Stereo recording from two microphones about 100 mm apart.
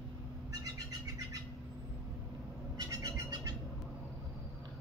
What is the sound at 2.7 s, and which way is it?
Bird, 40° right (ahead or behind).